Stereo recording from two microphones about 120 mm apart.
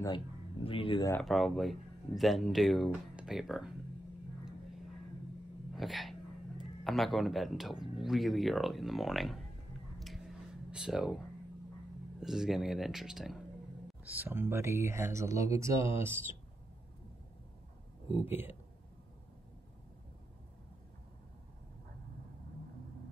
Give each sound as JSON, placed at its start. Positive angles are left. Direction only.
{"t": 0.7, "sound": "speech", "side_deg": 45}
{"t": 1.2, "sound": "speech", "side_deg": 0}
{"t": 5.8, "sound": "speech", "side_deg": 0}
{"t": 9.9, "sound": "a sound", "side_deg": 0}
{"t": 12.2, "sound": "speech", "side_deg": -5}
{"t": 14.0, "sound": "speech", "side_deg": -15}
{"t": 18.2, "sound": "speech", "side_deg": -15}